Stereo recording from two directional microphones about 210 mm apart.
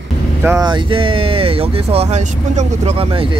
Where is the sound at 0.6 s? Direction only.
20° right (ahead or behind).